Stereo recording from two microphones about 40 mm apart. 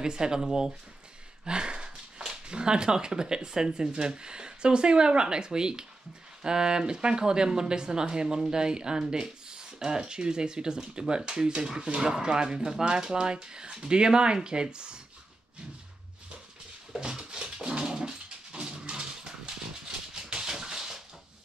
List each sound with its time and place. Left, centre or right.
0.0 s speech: centre
17.2 s dog: right
20.2 s a sound: centre